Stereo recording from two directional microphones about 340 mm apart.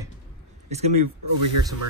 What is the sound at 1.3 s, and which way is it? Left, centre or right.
Speech, right.